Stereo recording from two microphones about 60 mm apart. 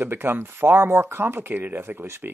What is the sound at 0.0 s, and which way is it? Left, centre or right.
Speech, right.